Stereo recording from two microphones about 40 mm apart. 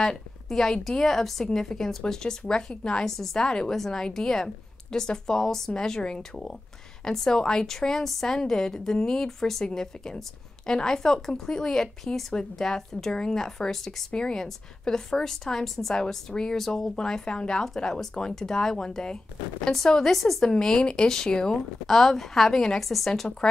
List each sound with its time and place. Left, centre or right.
0.0 s a woman's voice: centre
16.9 s speech: centre
20.4 s speech: centre